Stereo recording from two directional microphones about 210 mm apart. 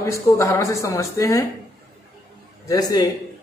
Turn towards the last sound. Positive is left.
turn(degrees=20)  # may be behind; listen again after turning